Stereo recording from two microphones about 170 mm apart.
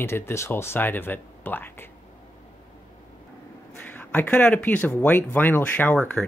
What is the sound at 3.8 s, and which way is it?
Speech, 10° left (ahead or behind).